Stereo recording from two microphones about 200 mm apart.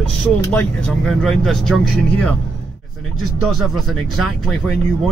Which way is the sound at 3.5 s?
Centre (ahead or behind).